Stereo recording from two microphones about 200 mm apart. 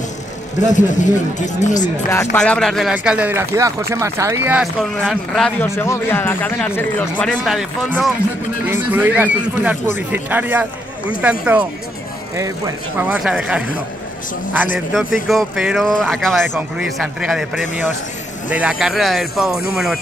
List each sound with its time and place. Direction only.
0.6 s speech: 40° left (ahead or behind)
2.0 s speech: 10° left (ahead or behind); by 4.6 s 10° right (ahead or behind)
5.0 s speech: centre (ahead or behind)
15.2 s speech: centre (ahead or behind)